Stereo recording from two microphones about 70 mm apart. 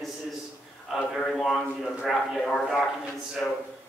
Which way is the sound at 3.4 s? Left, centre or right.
Left.